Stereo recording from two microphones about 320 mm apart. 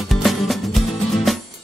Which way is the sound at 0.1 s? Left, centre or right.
Centre.